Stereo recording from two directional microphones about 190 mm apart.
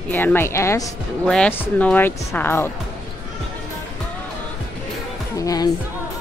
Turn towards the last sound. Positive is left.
turn(degrees=20)  # may be behind; listen again after turning